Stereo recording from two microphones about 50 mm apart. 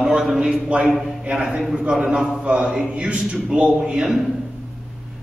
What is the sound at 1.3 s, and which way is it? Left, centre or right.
A man's voice, right.